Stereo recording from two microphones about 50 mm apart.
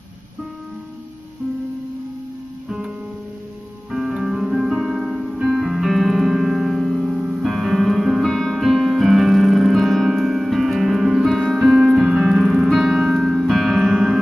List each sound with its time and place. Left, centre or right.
3.9 s music: centre
7.0 s music: right
7.4 s music: centre
8.3 s piano: centre
12.9 s music: centre
13.9 s music: centre